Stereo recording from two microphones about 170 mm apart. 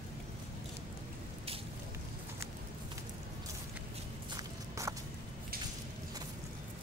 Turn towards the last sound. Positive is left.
turn(degrees=-20)  # may be behind; listen again after turning